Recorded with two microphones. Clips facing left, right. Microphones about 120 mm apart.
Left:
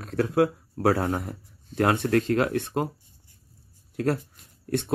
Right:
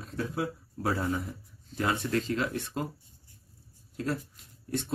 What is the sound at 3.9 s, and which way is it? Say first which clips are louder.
Speech: left 7 dB; 65° left (ahead or behind).